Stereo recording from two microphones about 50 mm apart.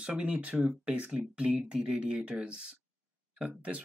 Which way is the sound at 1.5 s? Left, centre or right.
Centre.